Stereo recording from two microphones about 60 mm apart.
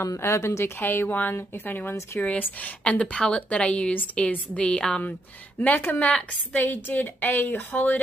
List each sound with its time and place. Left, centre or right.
0.0 s speech: left
1.0 s a woman's voice: left
5.6 s a woman's voice: left
6.5 s a woman's voice: left